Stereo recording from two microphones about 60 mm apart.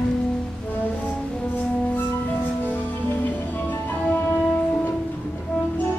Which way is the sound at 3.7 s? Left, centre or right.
Left.